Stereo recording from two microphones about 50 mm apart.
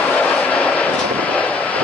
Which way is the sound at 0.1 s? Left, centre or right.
Left.